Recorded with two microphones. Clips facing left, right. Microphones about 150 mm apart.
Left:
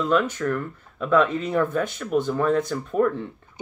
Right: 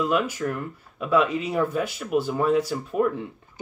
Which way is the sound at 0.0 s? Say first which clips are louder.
Left 2 dB; 10° right (ahead or behind).